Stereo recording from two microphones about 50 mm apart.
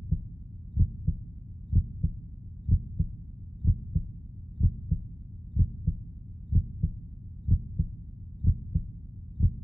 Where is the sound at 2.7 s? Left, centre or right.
Centre.